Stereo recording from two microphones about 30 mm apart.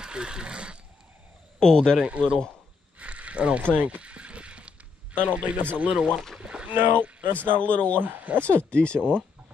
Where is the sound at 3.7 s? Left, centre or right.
Right.